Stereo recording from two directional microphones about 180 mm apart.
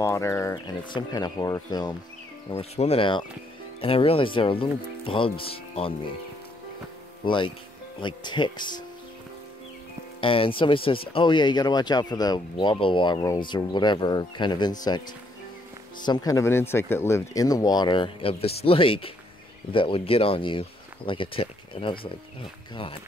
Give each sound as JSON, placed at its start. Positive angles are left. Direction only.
{"t": 0.0, "sound": "speech", "side_deg": 15}
{"t": 2.5, "sound": "speech", "side_deg": 35}
{"t": 7.2, "sound": "speech", "side_deg": 25}
{"t": 10.2, "sound": "speech", "side_deg": 30}
{"t": 16.1, "sound": "speech", "side_deg": 20}